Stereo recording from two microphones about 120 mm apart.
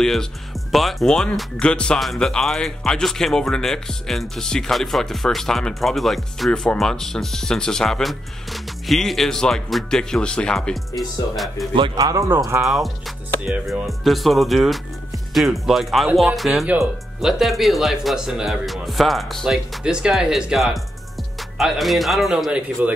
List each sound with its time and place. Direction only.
0.0 s speech: 5° left (ahead or behind)
11.7 s speech: 45° right (ahead or behind)
12.1 s speech: 25° right (ahead or behind)
12.6 s speech: centre (ahead or behind)